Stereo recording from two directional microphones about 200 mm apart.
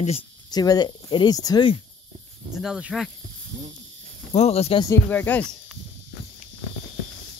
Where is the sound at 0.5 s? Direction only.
20° left (ahead or behind).